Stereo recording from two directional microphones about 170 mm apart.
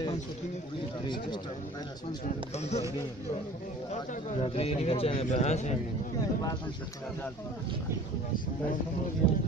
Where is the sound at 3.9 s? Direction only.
40° left (ahead or behind).